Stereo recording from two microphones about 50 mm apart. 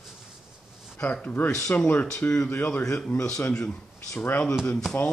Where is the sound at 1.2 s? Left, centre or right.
Left.